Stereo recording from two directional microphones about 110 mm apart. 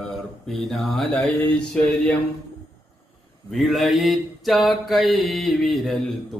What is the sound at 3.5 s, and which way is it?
Mantra, centre (ahead or behind).